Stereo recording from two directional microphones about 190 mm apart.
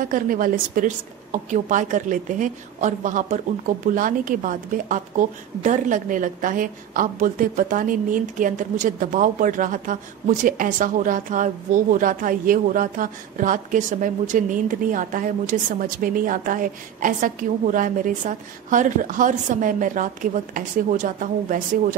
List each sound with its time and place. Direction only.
0.0 s a woman's voice: 45° right (ahead or behind)